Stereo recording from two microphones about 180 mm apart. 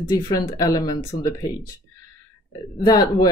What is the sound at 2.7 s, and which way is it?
Speech, 20° left (ahead or behind).